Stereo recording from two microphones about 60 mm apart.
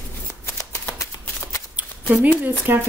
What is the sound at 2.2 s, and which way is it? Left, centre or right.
Speech, right.